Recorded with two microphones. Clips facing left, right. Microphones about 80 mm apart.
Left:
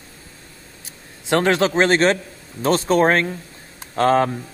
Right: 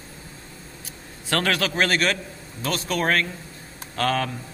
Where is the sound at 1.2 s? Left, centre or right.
Left.